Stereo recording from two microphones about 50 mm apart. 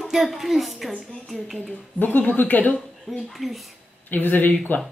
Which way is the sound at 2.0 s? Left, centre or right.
Left.